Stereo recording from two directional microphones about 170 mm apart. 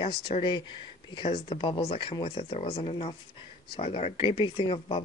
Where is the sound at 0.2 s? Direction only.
30° left (ahead or behind).